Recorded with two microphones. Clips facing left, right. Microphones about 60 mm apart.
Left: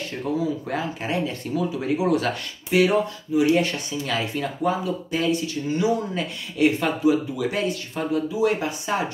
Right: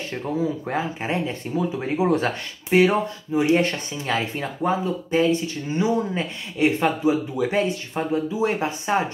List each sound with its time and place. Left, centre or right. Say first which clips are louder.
0.7 s speech: right 1 dB; right